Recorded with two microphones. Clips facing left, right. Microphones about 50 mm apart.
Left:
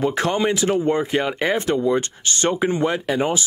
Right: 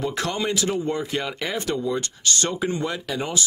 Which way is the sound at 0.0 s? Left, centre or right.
Left.